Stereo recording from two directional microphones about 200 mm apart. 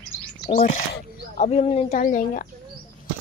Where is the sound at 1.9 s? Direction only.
40° left (ahead or behind).